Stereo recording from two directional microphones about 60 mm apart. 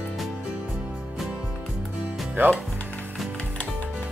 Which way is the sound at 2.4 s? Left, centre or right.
Right.